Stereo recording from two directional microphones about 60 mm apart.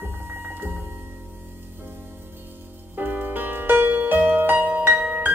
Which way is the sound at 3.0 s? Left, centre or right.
Right.